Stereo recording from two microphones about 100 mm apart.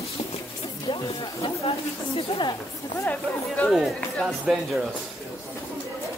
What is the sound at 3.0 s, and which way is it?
Speech, 15° left (ahead or behind).